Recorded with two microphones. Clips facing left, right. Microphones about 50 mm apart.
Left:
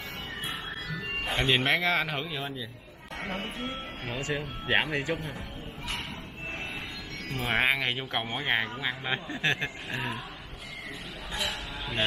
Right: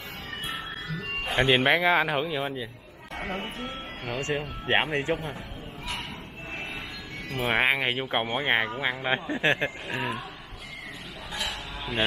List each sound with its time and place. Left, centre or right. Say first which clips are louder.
1.2 s speech: right 4 dB; centre
4.3 s speech: right 2 dB; right
7.3 s speech: right 2 dB; centre
9.8 s speech: right 3 dB; centre